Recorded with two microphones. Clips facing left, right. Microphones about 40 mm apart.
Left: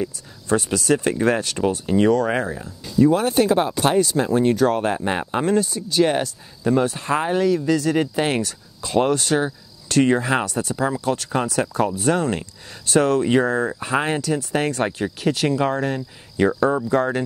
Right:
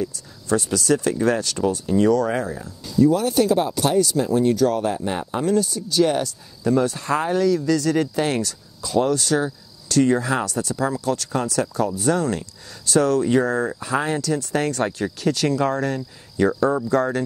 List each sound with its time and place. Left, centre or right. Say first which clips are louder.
0.0 s speech: even; left
8.8 s speech: left 1 dB; left